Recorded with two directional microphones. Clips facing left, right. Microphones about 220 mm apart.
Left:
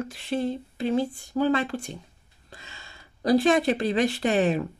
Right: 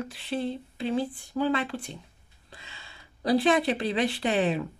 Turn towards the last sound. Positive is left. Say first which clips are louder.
# left 3 dB
turn(degrees=45)  # may be behind; listen again after turning